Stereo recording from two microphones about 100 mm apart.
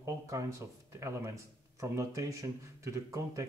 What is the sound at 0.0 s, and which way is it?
Speech, 30° right (ahead or behind).